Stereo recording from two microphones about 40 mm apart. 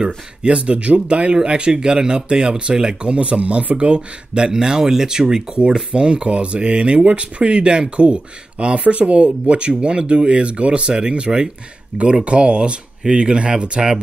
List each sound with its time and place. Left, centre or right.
0.0 s speech: right
12.3 s speech: right